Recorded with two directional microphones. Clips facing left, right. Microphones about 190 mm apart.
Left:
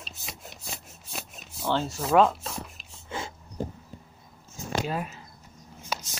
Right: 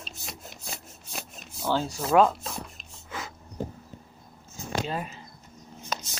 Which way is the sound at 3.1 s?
25° left (ahead or behind).